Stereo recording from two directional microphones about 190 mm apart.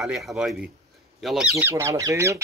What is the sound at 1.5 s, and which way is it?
Speech, 15° right (ahead or behind).